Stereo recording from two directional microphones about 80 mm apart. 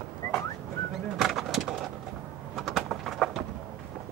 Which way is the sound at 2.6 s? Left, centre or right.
Centre.